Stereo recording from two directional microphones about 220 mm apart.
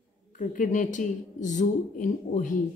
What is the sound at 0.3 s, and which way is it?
Speech, 35° left (ahead or behind).